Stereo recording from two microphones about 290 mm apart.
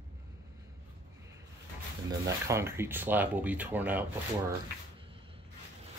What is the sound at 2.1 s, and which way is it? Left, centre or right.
Speech, centre.